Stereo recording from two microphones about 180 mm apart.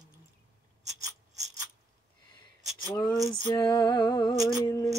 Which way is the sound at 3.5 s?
25° left (ahead or behind).